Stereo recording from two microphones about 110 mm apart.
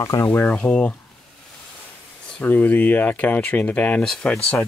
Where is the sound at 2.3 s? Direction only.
10° left (ahead or behind).